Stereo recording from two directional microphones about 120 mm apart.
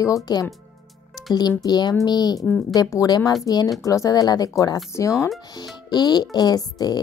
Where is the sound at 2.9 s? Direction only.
30° left (ahead or behind).